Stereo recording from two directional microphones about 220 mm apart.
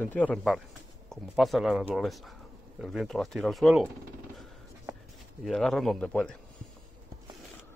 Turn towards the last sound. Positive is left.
turn(degrees=5)  # may be behind; listen again after turning